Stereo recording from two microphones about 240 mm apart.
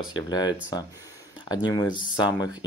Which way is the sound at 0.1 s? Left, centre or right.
Centre.